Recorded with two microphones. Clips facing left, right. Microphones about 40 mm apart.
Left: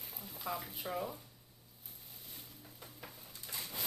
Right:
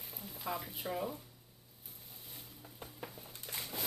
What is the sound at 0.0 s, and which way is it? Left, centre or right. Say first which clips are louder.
Speech: right 1 dB; centre.